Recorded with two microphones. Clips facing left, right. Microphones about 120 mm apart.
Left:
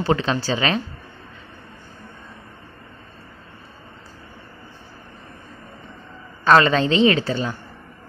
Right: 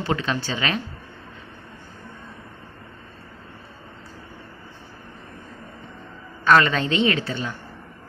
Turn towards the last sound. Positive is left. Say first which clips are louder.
# left 5 dB
turn(degrees=35)  # may be behind; listen again after turning